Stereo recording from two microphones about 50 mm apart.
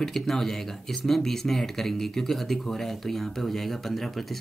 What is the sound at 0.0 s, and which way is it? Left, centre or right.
Speech, centre.